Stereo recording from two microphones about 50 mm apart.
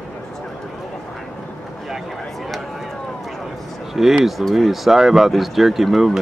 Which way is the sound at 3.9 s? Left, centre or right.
Centre.